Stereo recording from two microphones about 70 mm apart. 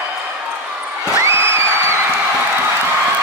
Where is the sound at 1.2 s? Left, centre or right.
Right.